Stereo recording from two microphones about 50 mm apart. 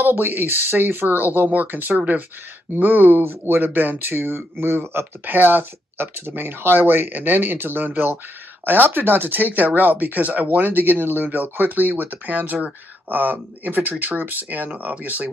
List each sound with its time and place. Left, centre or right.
0.0 s speech: right
5.2 s speech: right